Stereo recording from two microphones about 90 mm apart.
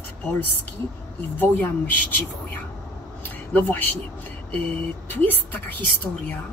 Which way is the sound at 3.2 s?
20° left (ahead or behind).